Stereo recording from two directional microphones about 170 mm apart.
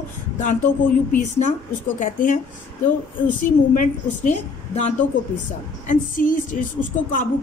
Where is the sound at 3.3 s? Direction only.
50° left (ahead or behind).